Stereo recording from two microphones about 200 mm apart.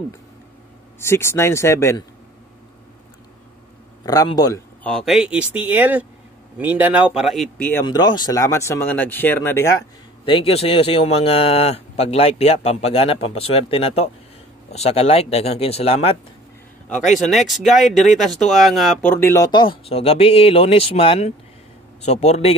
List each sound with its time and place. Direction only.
0.9 s speech: 15° left (ahead or behind)
4.0 s speech: 20° left (ahead or behind)
4.8 s speech: centre (ahead or behind)
7.8 s speech: 20° left (ahead or behind)
10.2 s speech: 25° left (ahead or behind)
17.3 s speech: centre (ahead or behind); by 22.5 s 35° left (ahead or behind)